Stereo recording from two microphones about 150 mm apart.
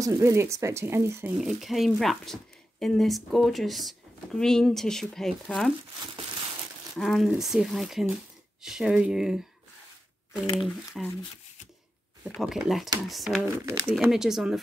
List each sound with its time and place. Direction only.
0.0 s speech: 20° right (ahead or behind)
1.4 s speech: centre (ahead or behind)
7.0 s speech: centre (ahead or behind)
10.6 s speech: centre (ahead or behind)
12.4 s speech: centre (ahead or behind)
13.7 s speech: 20° right (ahead or behind)
14.1 s speech: 5° right (ahead or behind)